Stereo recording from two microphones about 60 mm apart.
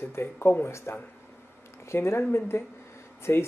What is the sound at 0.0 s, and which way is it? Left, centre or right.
Speech, left.